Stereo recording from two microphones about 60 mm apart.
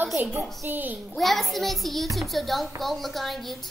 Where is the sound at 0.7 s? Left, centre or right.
Right.